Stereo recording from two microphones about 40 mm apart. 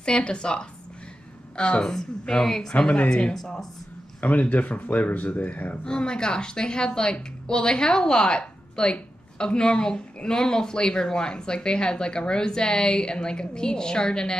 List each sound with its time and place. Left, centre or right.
0.0 s a woman's voice: left
1.9 s a woman's voice: centre
4.2 s speech: left
5.9 s a woman's voice: centre